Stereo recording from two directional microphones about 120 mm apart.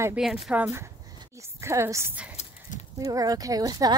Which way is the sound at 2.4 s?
65° left (ahead or behind).